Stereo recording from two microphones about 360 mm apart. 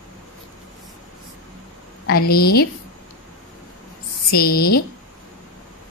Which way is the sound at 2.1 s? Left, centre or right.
Left.